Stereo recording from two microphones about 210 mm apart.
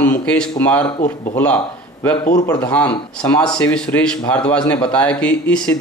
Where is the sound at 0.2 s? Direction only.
5° left (ahead or behind).